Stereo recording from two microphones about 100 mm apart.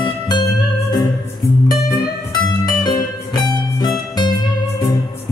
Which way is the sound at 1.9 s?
40° left (ahead or behind).